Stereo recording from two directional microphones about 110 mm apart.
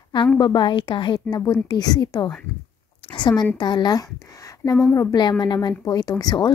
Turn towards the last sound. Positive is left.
turn(degrees=35)  # may be behind; listen again after turning